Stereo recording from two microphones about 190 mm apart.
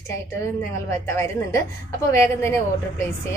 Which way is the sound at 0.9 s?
15° left (ahead or behind).